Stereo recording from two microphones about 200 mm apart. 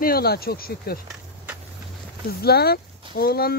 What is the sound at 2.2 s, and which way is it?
Speech, 50° left (ahead or behind).